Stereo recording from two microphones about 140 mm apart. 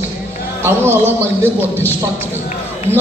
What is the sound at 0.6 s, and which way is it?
Music, 15° right (ahead or behind).